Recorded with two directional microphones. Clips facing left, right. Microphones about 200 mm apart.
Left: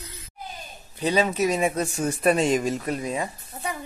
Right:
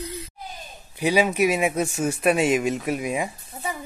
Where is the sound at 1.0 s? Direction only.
10° right (ahead or behind).